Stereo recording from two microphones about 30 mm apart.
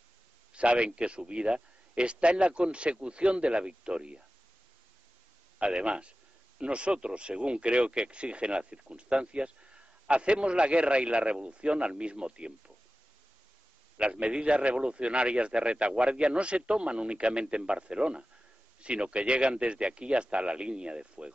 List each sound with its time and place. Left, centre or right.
0.5 s a man's voice: right
5.7 s speech: right
14.2 s speech: right